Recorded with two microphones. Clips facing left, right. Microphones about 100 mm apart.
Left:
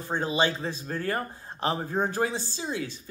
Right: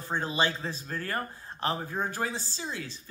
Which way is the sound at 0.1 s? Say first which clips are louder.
Left 3 dB; 20° left (ahead or behind).